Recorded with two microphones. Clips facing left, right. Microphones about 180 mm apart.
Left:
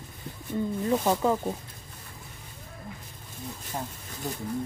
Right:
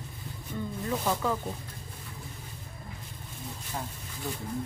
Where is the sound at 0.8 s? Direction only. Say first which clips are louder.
Left 5 dB; 30° left (ahead or behind).